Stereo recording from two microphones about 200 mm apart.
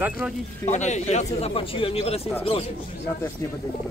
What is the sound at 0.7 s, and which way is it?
A man's voice, 35° left (ahead or behind).